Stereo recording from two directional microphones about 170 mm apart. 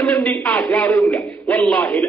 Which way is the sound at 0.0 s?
10° left (ahead or behind).